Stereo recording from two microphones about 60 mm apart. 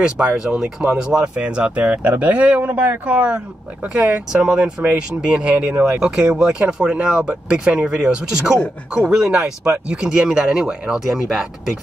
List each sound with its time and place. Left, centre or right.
0.0 s speech: right
5.9 s speech: centre